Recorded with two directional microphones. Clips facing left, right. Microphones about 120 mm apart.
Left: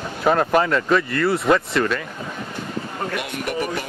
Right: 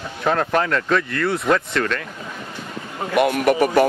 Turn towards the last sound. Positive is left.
turn(degrees=-55)  # may be behind; listen again after turning